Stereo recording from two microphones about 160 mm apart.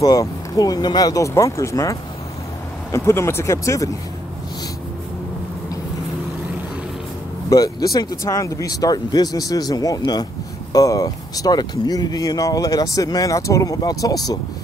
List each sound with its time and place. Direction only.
0.0 s speech: 25° left (ahead or behind)
7.4 s speech: 20° left (ahead or behind)